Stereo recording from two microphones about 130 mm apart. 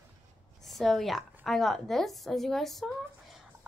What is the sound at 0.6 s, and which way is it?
A woman's voice, centre (ahead or behind).